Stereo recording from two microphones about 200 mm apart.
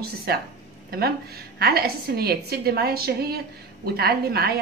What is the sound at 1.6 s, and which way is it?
A woman's voice, 50° right (ahead or behind).